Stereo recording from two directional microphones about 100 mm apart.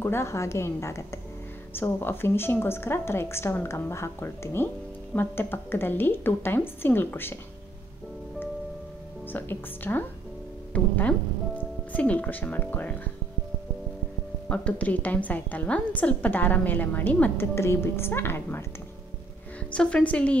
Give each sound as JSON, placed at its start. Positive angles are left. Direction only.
{"t": 0.0, "sound": "a woman's voice", "side_deg": 25}
{"t": 9.3, "sound": "a woman's voice", "side_deg": 20}
{"t": 14.5, "sound": "a woman's voice", "side_deg": 10}
{"t": 19.7, "sound": "a woman's voice", "side_deg": 10}